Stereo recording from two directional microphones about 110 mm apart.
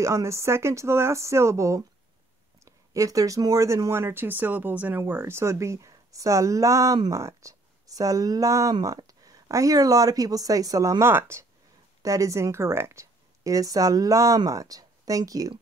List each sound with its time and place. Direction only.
0.0 s speech: 25° right (ahead or behind)